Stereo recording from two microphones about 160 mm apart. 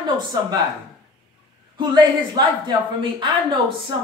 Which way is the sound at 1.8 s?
25° right (ahead or behind).